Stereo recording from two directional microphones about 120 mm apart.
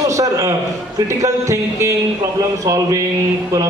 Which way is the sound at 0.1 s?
25° right (ahead or behind).